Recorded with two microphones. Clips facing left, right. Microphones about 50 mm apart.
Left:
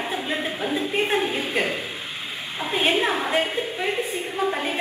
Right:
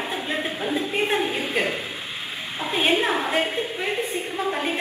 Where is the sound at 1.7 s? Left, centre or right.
Right.